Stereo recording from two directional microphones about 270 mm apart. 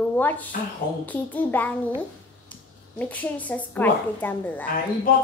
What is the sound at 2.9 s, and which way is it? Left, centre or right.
A woman's voice, centre.